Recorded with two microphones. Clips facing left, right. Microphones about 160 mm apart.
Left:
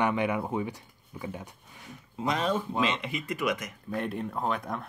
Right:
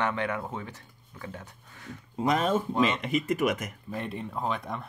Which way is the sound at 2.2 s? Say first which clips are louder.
Right 3 dB; 50° right (ahead or behind).